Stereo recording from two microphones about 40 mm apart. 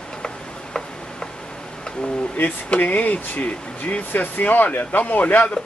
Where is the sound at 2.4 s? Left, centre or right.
Left.